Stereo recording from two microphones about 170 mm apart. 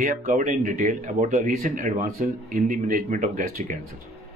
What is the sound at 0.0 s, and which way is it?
Speech, 50° right (ahead or behind).